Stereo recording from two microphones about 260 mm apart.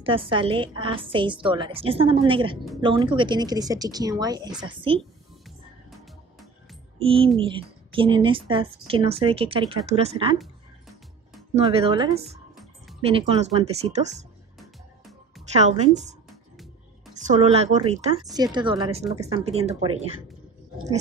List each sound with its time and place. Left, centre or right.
0.0 s a woman's voice: right
5.9 s music: centre
7.0 s a woman's voice: right
10.4 s music: centre
11.5 s a woman's voice: right
14.6 s music: centre
15.5 s a woman's voice: right
16.3 s music: centre
17.1 s a woman's voice: right